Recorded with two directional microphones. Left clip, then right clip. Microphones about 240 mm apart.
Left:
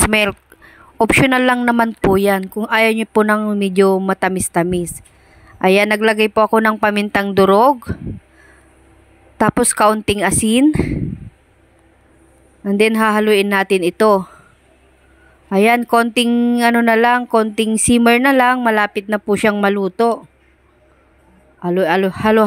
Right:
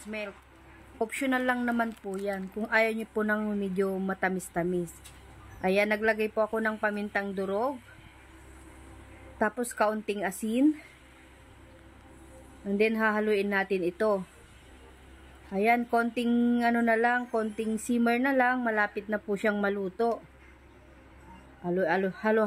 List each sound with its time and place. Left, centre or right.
0.9 s speech: left
9.4 s a woman's voice: left
12.6 s a woman's voice: left
15.5 s speech: left
21.6 s speech: left